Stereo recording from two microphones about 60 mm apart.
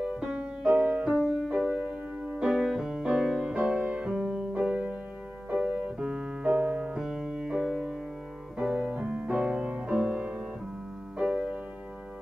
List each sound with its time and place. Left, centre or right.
0.0 s music: centre
1.2 s music: centre
2.4 s music: centre
6.0 s music: centre
6.4 s music: right
7.0 s music: centre
9.9 s music: centre